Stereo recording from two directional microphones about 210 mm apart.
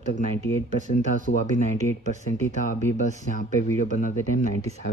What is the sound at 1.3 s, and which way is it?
Speech, 50° left (ahead or behind).